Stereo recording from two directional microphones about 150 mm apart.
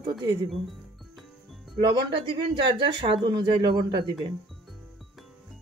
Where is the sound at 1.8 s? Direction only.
30° right (ahead or behind).